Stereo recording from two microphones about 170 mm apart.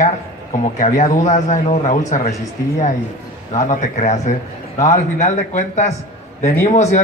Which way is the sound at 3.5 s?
45° left (ahead or behind).